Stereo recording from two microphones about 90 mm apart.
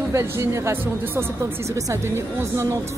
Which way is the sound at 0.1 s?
30° right (ahead or behind).